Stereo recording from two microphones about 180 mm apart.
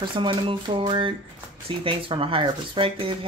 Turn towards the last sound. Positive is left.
turn(degrees=-30)  # may be behind; listen again after turning